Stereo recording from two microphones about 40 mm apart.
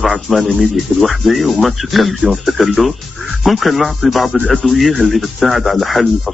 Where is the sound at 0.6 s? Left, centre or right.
Centre.